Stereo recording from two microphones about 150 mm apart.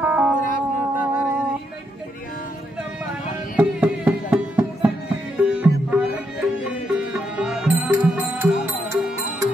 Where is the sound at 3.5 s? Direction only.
10° right (ahead or behind).